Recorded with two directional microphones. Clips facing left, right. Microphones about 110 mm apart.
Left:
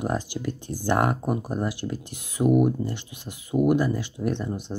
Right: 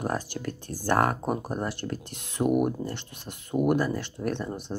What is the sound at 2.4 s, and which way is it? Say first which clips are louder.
Speech: left 4 dB; 5° right (ahead or behind).